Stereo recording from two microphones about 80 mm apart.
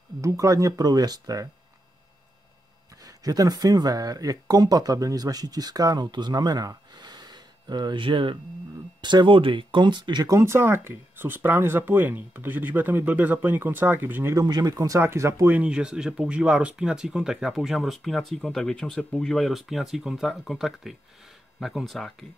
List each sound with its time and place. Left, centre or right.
0.2 s speech: right
3.0 s speech: right
10.2 s speech: right
14.3 s speech: right
15.0 s speech: right
15.5 s speech: centre